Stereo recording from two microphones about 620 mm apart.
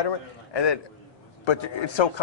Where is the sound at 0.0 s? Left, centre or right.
Left.